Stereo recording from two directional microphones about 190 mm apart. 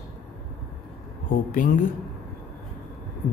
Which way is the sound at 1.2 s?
45° left (ahead or behind).